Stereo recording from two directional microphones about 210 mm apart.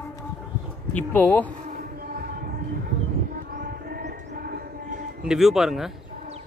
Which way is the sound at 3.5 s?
45° right (ahead or behind).